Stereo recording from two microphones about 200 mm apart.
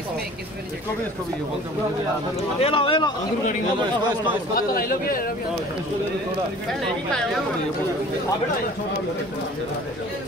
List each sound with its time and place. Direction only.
2.6 s speech: 25° left (ahead or behind)
4.6 s a man's voice: 45° left (ahead or behind)